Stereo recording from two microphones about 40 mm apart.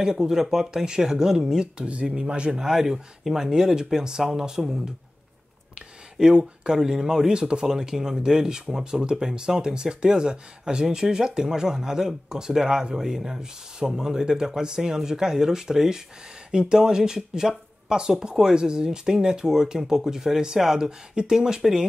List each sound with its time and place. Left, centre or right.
0.0 s speech: centre
1.8 s speech: right
2.6 s speech: centre
6.2 s speech: centre